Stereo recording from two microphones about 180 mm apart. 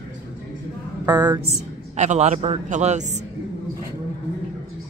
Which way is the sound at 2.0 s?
40° right (ahead or behind).